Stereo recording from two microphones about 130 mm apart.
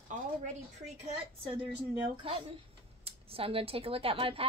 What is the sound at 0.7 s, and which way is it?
Speech, 60° right (ahead or behind).